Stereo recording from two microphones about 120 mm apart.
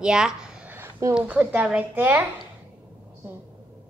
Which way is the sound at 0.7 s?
20° right (ahead or behind).